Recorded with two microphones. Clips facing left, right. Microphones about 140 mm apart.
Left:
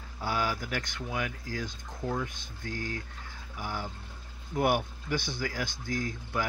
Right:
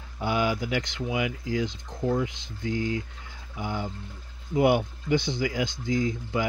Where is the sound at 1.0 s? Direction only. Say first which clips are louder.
Right 6 dB; 15° right (ahead or behind).